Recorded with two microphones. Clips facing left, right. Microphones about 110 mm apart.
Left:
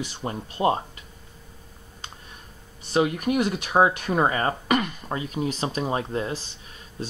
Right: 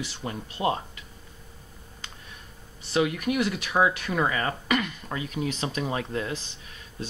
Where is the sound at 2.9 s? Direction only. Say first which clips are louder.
Left 3 dB; 35° left (ahead or behind).